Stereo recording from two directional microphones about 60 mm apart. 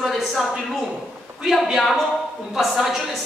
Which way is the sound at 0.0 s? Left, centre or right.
Centre.